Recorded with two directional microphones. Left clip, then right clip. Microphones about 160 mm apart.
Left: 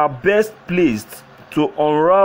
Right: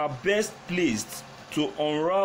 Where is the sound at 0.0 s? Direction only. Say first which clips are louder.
Left 10 dB; 35° left (ahead or behind).